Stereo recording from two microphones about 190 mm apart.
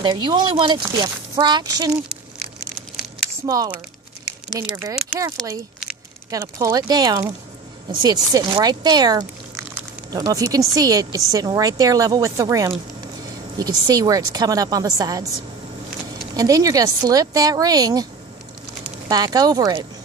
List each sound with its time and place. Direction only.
0.0 s a woman's voice: 20° right (ahead or behind)
3.4 s a woman's voice: 20° right (ahead or behind)
6.3 s a woman's voice: 20° right (ahead or behind)
16.3 s a woman's voice: 20° right (ahead or behind)
19.0 s a woman's voice: 20° right (ahead or behind)